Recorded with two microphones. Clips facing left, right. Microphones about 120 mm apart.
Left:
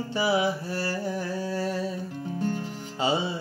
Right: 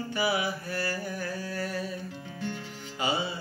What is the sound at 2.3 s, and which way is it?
Music, 40° left (ahead or behind).